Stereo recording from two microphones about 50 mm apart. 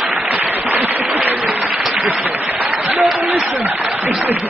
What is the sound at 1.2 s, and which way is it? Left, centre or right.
Applause, right.